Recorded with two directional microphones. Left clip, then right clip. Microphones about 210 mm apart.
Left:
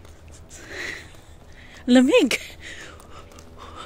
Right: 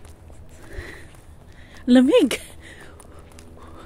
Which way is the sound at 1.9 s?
15° right (ahead or behind).